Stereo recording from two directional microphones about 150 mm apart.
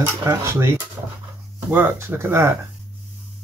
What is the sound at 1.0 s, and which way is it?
Dog, 15° right (ahead or behind).